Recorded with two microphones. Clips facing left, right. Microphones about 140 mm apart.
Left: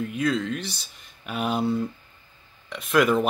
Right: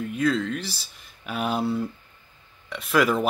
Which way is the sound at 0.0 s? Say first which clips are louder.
Right 1 dB; centre (ahead or behind).